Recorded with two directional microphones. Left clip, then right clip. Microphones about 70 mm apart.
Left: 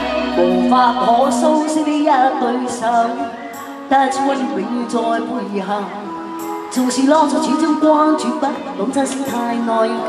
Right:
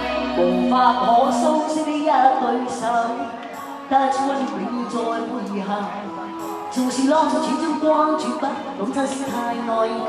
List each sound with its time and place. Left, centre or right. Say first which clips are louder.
0.0 s music: left 4 dB; left
6.7 s music: left 5 dB; left